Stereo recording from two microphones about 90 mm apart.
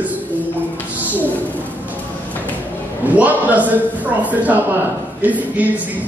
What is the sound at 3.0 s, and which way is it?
A man's voice, 20° right (ahead or behind).